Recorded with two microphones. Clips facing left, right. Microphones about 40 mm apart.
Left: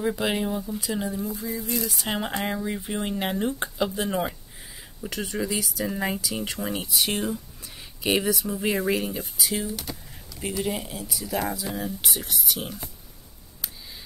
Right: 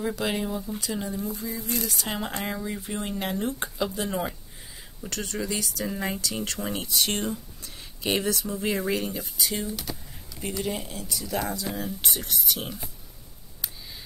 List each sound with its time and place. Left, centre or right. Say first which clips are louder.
0.0 s speech: left 2 dB; centre